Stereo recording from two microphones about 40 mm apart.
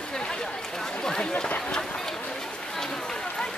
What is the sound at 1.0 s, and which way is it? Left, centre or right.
Run, left.